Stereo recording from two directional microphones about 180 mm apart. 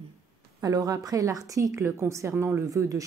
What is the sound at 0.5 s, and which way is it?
A woman's voice, 20° right (ahead or behind).